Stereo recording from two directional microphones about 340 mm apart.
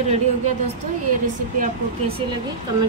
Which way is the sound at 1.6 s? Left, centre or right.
Centre.